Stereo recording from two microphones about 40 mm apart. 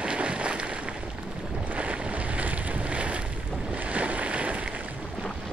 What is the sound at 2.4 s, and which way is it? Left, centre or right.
Boat, right.